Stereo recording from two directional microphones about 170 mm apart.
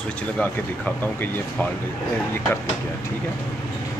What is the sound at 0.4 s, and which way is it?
Speech, 10° left (ahead or behind).